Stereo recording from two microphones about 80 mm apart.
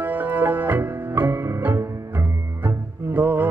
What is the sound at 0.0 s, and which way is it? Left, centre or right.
Music, right.